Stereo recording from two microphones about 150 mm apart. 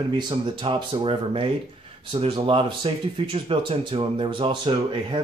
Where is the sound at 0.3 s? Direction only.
30° right (ahead or behind).